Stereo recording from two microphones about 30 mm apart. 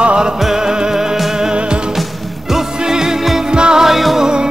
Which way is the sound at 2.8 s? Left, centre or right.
Right.